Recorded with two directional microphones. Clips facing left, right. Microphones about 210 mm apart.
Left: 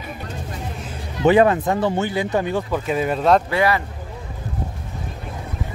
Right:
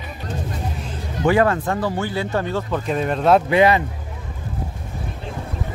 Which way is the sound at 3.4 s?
20° right (ahead or behind).